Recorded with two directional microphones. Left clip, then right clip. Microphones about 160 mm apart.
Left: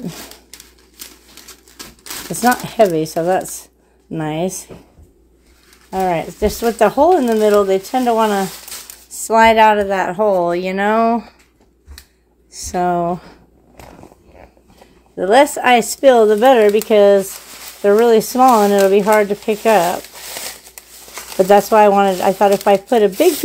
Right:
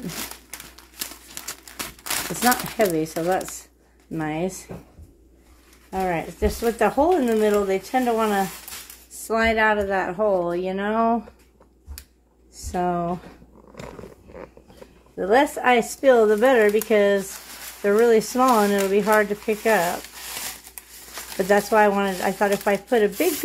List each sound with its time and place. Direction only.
2.8 s speech: 45° left (ahead or behind)
5.9 s speech: 55° left (ahead or behind)
9.3 s speech: 60° left (ahead or behind); by 11.2 s 35° left (ahead or behind)
12.5 s speech: 40° left (ahead or behind)
15.1 s speech: 60° left (ahead or behind)
21.5 s speech: 40° left (ahead or behind)